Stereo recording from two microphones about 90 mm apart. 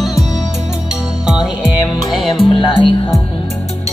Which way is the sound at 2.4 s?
80° left.